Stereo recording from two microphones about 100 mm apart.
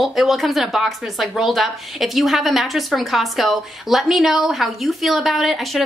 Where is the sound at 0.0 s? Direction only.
Centre (ahead or behind).